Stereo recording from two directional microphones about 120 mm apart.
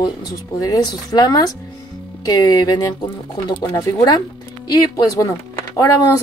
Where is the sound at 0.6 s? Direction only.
30° left (ahead or behind).